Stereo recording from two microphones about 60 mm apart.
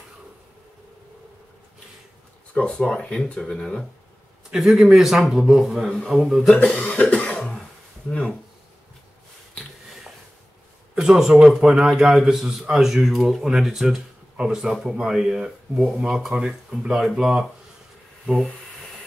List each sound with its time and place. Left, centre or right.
2.8 s speech: centre
4.5 s speech: centre
6.5 s speech: left
7.3 s cough: centre
11.0 s speech: centre